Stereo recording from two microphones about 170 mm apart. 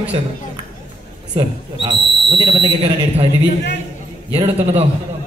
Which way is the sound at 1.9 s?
90° left.